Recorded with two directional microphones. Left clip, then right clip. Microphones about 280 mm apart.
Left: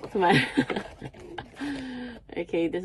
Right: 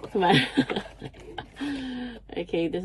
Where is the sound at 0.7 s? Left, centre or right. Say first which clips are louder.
Right 1 dB; centre.